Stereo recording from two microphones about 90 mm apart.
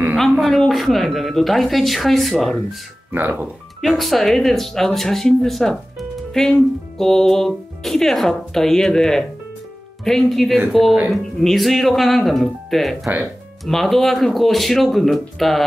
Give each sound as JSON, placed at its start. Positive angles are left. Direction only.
{"t": 0.4, "sound": "speech", "side_deg": 0}
{"t": 3.1, "sound": "speech", "side_deg": -20}
{"t": 3.8, "sound": "speech", "side_deg": 0}